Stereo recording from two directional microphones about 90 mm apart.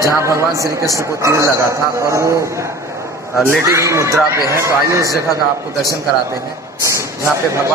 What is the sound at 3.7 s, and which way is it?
A man's voice, 35° right (ahead or behind).